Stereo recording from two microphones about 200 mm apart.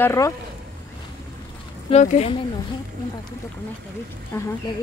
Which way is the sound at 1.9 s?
35° left (ahead or behind).